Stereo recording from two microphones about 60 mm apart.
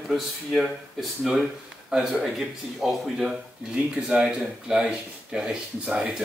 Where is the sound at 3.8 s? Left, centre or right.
Centre.